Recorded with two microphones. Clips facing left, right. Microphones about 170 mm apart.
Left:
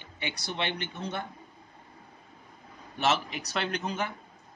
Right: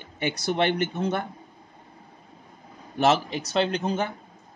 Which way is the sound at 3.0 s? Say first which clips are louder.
Right 6 dB; 35° right (ahead or behind).